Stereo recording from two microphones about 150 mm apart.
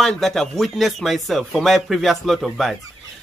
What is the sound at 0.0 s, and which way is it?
Speech, centre (ahead or behind).